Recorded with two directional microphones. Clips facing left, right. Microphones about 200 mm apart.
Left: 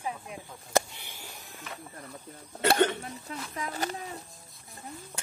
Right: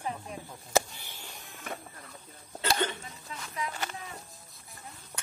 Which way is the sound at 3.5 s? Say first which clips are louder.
Left 2 dB; 40° left (ahead or behind).